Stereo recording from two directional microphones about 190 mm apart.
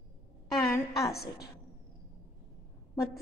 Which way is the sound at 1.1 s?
55° left (ahead or behind).